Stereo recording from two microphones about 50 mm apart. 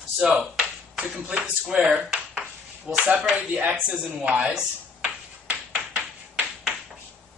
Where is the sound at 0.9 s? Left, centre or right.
Right.